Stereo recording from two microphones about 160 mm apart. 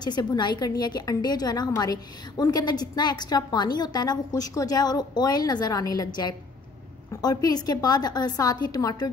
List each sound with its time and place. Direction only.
0.0 s a woman's voice: 25° left (ahead or behind)